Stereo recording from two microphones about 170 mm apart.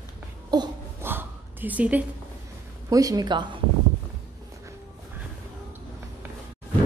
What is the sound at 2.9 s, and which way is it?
Speech, 20° right (ahead or behind).